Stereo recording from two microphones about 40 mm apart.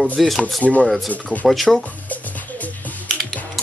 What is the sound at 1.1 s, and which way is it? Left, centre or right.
Speech, left.